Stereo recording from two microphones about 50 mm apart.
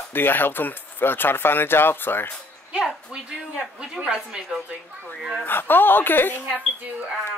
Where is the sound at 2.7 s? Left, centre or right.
Centre.